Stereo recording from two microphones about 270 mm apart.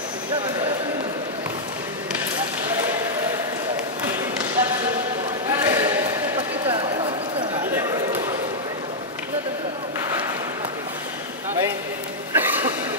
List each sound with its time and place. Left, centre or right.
4.0 s basketball bounce: centre
5.5 s a sound: centre
6.7 s clip-clop: centre
12.4 s throat clearing: centre